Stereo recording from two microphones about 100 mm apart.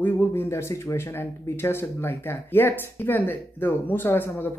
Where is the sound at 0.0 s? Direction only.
20° left (ahead or behind).